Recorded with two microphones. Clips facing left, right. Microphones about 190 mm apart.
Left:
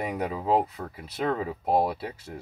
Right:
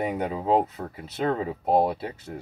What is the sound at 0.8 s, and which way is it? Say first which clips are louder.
Speech: right 2 dB; 25° right (ahead or behind).